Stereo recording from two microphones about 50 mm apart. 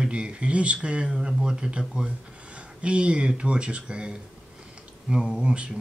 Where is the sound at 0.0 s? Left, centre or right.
Right.